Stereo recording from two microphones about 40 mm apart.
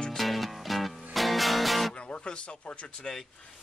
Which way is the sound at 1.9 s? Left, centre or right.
Left.